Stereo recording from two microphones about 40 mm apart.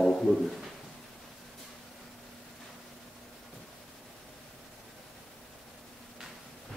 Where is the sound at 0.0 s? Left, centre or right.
Centre.